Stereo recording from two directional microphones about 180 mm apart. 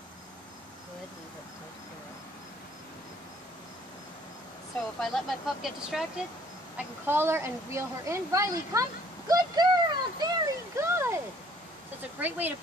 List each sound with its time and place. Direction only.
5.0 s speech: centre (ahead or behind)
6.8 s speech: 10° right (ahead or behind)
9.3 s a sound: 20° right (ahead or behind)
12.2 s speech: 10° right (ahead or behind)